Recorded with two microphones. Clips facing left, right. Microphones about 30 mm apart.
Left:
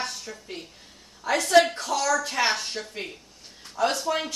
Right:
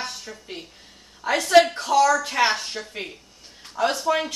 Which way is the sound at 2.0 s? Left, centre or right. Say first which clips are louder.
Right 7 dB; right.